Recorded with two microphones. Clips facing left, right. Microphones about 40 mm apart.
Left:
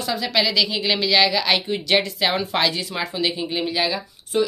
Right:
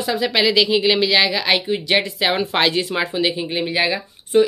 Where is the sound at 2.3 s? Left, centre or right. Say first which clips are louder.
Right 6 dB; right.